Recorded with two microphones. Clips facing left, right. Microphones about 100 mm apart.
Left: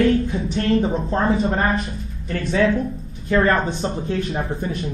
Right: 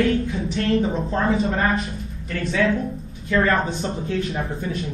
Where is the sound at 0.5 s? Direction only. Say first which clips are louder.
Left 2 dB; 30° left (ahead or behind).